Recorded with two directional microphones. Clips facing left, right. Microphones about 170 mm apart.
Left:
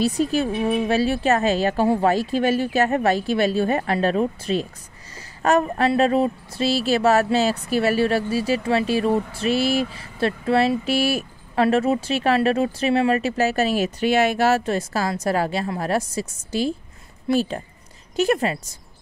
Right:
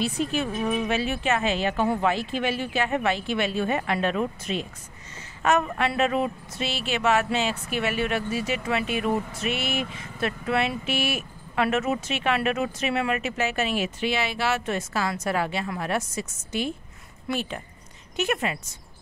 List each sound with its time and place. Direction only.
0.0 s speech: 40° left (ahead or behind)